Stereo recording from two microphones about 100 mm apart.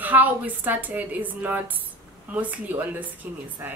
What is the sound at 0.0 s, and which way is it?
A woman's voice, 15° right (ahead or behind).